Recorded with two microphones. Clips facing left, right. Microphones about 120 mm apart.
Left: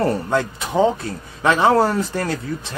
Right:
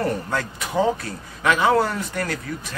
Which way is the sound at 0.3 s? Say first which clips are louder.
Left 5 dB; 20° left (ahead or behind).